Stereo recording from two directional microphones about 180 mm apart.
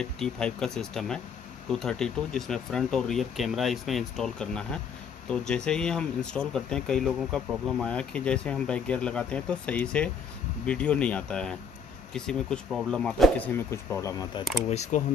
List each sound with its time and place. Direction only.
0.0 s speech: 5° left (ahead or behind)
14.7 s speech: 40° left (ahead or behind)